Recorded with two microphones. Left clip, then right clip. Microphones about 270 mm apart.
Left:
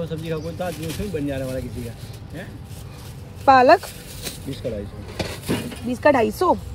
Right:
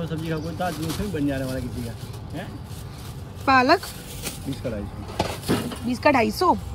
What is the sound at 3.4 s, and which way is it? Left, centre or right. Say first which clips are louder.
Speech: left 5 dB; centre.